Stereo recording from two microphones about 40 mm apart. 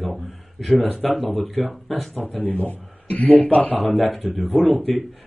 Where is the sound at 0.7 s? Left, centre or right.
Left.